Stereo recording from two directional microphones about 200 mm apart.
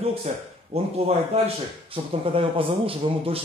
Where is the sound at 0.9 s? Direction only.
30° right (ahead or behind).